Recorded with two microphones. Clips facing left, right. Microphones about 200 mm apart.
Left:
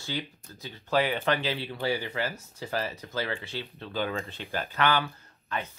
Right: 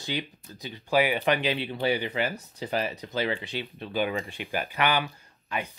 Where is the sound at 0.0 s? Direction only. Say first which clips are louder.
Right 2 dB; 15° right (ahead or behind).